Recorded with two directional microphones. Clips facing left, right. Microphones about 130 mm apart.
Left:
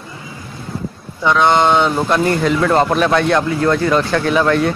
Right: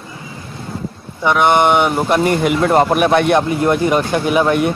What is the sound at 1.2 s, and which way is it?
Speech, 20° right (ahead or behind).